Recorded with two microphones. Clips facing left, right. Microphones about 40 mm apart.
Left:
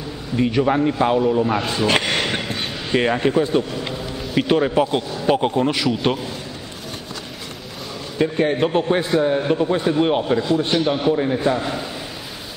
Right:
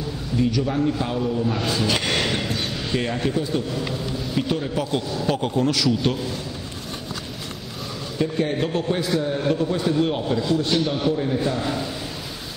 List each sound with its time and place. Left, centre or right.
0.4 s a man's voice: left
2.0 s a sound: centre
3.0 s a man's voice: left
4.4 s a man's voice: left
4.8 s a man's voice: left
8.2 s a man's voice: left